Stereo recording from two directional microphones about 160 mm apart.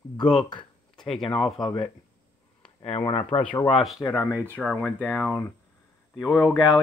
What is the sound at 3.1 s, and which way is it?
Speech, 40° left (ahead or behind).